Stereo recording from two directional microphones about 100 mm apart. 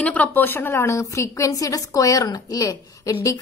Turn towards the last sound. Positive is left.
turn(degrees=35)  # may be behind; listen again after turning